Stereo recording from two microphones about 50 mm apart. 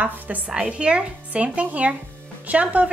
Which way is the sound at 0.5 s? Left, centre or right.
Right.